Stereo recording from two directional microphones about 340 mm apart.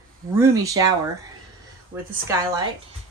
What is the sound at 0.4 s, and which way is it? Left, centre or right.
Speech, centre.